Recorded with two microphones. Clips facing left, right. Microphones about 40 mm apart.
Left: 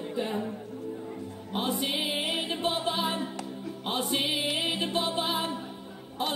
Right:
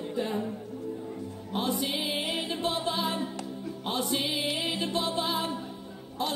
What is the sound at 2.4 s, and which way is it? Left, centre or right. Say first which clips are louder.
Music: left 1 dB; left.